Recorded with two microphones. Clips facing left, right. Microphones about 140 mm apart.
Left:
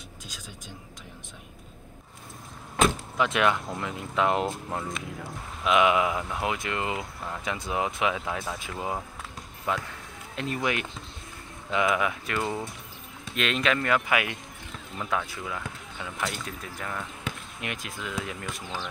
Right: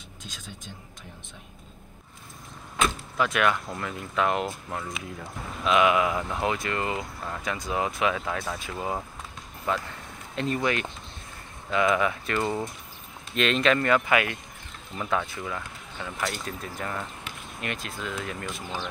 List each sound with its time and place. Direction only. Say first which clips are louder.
3.2 s speech: even; 25° left (ahead or behind); by 17.0 s centre (ahead or behind)
17.6 s speech: right 2 dB; 15° left (ahead or behind)